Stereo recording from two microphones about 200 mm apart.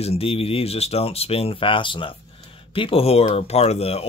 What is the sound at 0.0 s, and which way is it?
Speech, 30° left (ahead or behind).